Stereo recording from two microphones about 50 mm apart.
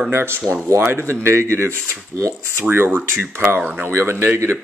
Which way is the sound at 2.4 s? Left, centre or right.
Right.